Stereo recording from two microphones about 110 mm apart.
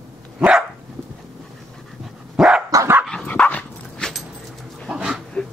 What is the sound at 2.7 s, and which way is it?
Dog, 30° right (ahead or behind).